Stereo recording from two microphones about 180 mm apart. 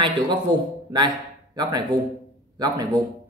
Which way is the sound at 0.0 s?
25° right (ahead or behind).